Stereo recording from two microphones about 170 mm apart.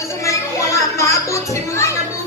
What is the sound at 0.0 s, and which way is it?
Music, 15° left (ahead or behind).